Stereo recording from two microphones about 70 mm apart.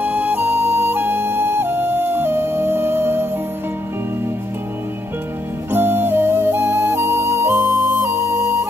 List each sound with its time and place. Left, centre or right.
0.0 s music: right
5.7 s music: right